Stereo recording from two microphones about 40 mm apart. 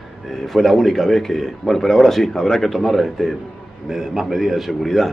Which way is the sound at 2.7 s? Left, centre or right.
Centre.